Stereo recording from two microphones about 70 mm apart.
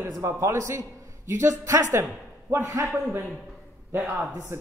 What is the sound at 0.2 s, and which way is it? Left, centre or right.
A man's voice, right.